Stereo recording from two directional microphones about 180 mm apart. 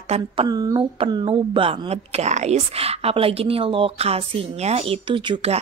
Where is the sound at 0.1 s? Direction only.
25° right (ahead or behind).